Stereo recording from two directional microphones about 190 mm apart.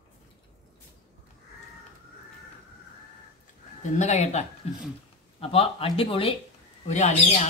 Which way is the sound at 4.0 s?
35° left (ahead or behind).